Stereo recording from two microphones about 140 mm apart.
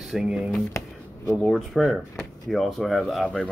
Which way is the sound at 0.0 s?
Centre (ahead or behind).